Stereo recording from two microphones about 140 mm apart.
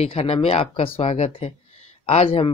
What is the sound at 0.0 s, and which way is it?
Speech, 45° left (ahead or behind).